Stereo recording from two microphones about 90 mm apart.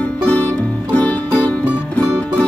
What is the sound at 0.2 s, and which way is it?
Music, 15° left (ahead or behind).